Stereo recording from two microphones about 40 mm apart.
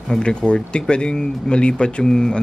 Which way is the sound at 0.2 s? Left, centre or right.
Left.